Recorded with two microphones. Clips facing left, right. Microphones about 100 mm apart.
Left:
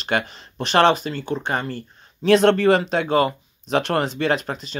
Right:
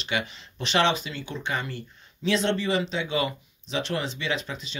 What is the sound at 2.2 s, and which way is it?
Speech, 55° left (ahead or behind).